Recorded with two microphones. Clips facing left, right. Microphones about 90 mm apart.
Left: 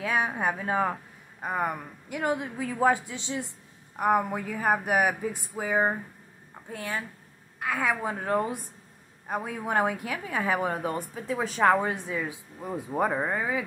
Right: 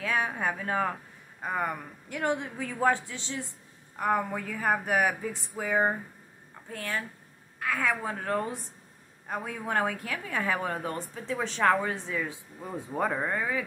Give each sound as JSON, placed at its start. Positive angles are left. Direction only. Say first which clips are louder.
{"t": 0.0, "sound": "a man's voice", "louder": "left 2 dB", "side_deg": 15}